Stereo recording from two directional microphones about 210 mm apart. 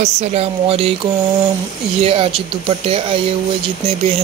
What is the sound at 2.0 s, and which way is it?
Speech, 25° right (ahead or behind).